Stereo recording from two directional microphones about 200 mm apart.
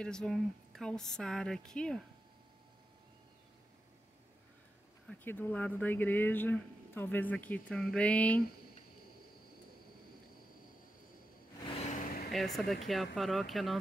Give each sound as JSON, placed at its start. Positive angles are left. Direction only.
{"t": 0.0, "sound": "speech", "side_deg": 5}
{"t": 5.0, "sound": "speech", "side_deg": 10}
{"t": 11.8, "sound": "vehicle", "side_deg": 40}
{"t": 12.3, "sound": "speech", "side_deg": 0}